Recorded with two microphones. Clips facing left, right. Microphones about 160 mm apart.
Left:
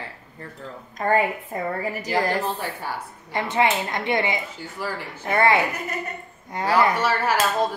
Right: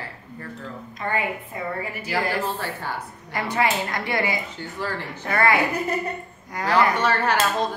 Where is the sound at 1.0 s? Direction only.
40° left (ahead or behind).